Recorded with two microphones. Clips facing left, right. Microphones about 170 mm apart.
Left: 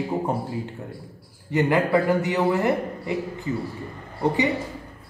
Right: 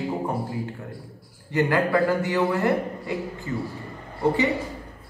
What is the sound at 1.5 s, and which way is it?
A man's voice, 20° left (ahead or behind).